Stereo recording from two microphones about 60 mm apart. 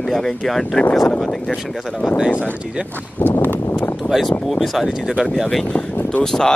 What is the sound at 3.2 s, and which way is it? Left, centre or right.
Clip-clop, left.